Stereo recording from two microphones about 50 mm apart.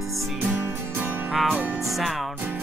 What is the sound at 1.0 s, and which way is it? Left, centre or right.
Music, right.